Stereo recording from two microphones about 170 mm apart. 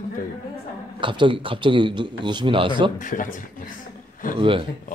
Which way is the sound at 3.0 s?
50° left (ahead or behind).